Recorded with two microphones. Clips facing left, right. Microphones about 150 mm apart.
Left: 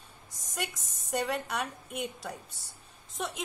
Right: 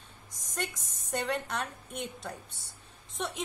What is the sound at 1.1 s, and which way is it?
A woman's voice, 5° left (ahead or behind).